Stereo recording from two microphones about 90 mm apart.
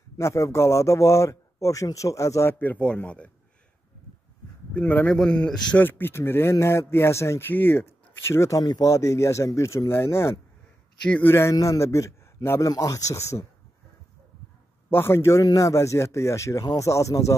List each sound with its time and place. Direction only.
0.2 s speech: 35° left (ahead or behind)
2.6 s a man's voice: 15° left (ahead or behind)
4.7 s a man's voice: 15° left (ahead or behind)
11.1 s a man's voice: 15° left (ahead or behind)
11.5 s speech: 40° left (ahead or behind)
14.9 s speech: 25° left (ahead or behind)